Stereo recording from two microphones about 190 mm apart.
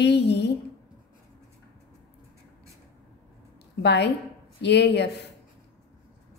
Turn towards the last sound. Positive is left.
turn(degrees=65)  # may be behind; listen again after turning